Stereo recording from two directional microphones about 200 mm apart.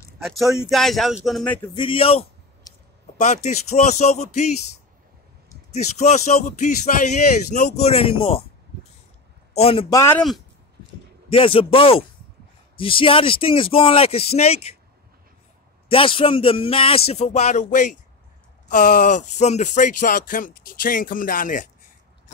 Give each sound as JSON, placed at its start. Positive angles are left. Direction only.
{"t": 0.2, "sound": "speech", "side_deg": 0}
{"t": 1.8, "sound": "a sound", "side_deg": 25}
{"t": 3.7, "sound": "speech", "side_deg": 35}
{"t": 9.6, "sound": "a man's voice", "side_deg": 30}
{"t": 9.8, "sound": "speech", "side_deg": 15}
{"t": 11.2, "sound": "a man's voice", "side_deg": 25}
{"t": 15.9, "sound": "a man's voice", "side_deg": 25}